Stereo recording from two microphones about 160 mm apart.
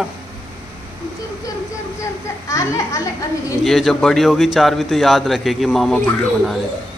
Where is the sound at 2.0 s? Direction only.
20° left (ahead or behind).